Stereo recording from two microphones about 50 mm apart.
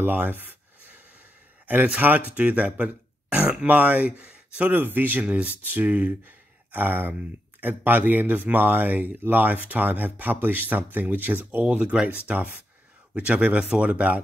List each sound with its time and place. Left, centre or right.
0.0 s speech: right
2.0 s speech: right
4.6 s speech: right
5.2 s speech: right
11.6 s speech: right